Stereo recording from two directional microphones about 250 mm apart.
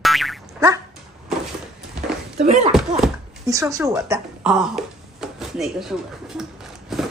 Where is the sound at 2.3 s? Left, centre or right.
Right.